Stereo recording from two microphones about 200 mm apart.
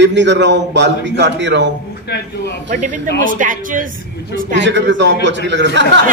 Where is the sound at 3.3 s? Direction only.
40° right (ahead or behind).